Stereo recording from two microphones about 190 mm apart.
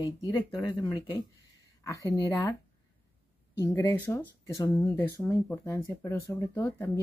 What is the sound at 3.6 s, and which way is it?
Speech, 10° left (ahead or behind).